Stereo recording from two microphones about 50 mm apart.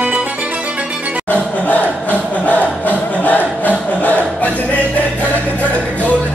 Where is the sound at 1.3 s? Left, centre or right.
Left.